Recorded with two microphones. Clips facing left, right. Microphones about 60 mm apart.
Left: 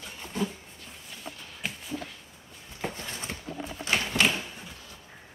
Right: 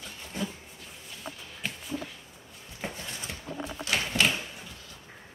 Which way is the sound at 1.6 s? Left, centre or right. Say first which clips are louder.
Even; centre.